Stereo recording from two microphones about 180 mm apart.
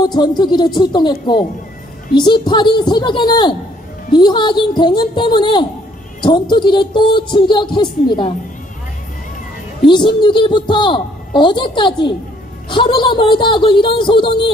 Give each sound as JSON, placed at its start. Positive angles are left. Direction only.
{"t": 0.0, "sound": "a woman's voice", "side_deg": 25}
{"t": 2.1, "sound": "a woman's voice", "side_deg": 25}
{"t": 9.8, "sound": "a woman's voice", "side_deg": 25}